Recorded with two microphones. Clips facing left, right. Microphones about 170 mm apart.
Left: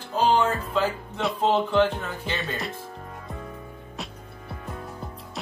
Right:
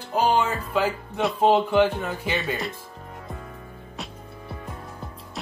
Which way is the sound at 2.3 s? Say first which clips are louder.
Right 2 dB; centre (ahead or behind).